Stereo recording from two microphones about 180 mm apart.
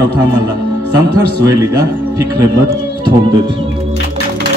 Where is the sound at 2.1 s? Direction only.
20° right (ahead or behind).